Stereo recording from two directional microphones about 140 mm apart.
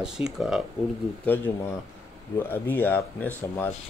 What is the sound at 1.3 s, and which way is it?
Speech, 10° left (ahead or behind).